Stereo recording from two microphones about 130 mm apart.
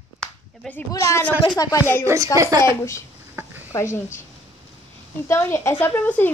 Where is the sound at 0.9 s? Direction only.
25° left (ahead or behind).